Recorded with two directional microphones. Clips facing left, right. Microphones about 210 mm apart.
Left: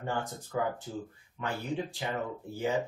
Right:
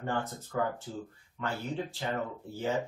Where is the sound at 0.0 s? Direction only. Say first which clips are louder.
Right 1 dB; 15° left (ahead or behind).